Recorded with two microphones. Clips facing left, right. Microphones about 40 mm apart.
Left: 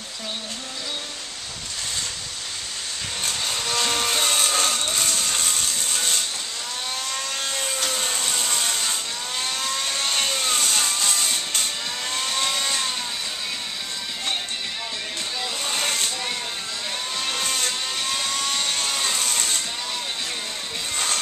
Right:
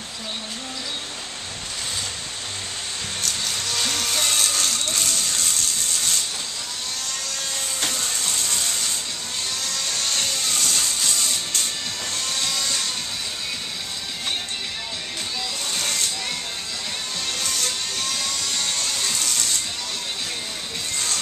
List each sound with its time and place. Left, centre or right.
3.2 s vehicle: left
7.9 s a sound: left
9.6 s vehicle: left
11.1 s music: left
12.1 s vehicle: left
15.6 s vehicle: left
17.2 s vehicle: left
18.6 s music: left